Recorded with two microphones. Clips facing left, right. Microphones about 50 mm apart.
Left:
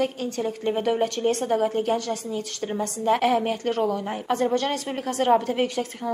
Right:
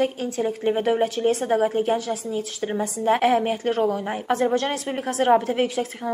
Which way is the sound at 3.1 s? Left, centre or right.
Centre.